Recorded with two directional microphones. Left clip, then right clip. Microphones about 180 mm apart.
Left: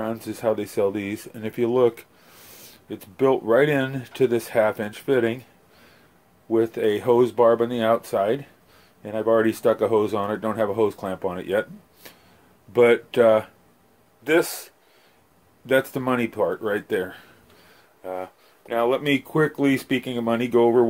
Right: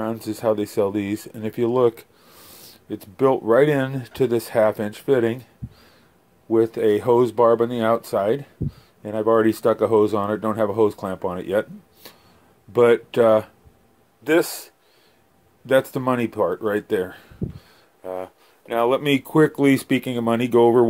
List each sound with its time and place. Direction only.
0.0 s speech: 30° right (ahead or behind)
6.5 s speech: 30° right (ahead or behind); by 20.8 s 45° right (ahead or behind)